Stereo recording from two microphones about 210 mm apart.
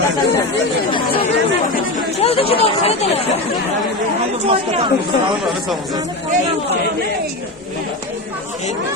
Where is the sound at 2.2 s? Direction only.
25° left (ahead or behind).